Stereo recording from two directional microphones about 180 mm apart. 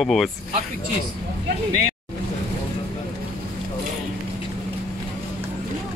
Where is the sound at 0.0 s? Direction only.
Centre (ahead or behind).